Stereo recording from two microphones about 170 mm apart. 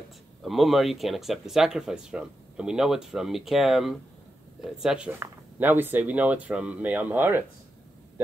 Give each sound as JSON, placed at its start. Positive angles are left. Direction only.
{"t": 0.4, "sound": "speech", "side_deg": 0}